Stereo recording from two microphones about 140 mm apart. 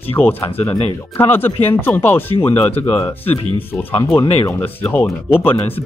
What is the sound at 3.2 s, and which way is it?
Speech, 15° left (ahead or behind).